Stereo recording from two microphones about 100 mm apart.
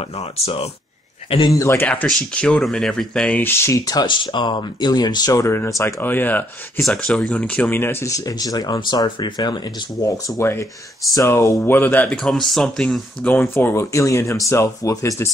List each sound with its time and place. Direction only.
0.0 s speech: 80° left
1.6 s speech: 25° left (ahead or behind)
2.0 s speech: 5° left (ahead or behind)
3.6 s speech: 35° left (ahead or behind); by 6.4 s 20° left (ahead or behind)
6.8 s speech: 5° left (ahead or behind)
7.8 s speech: 25° left (ahead or behind)
8.1 s speech: 35° left (ahead or behind); by 12.1 s 20° left (ahead or behind)
12.1 s speech: 5° left (ahead or behind)
13.4 s speech: 25° left (ahead or behind)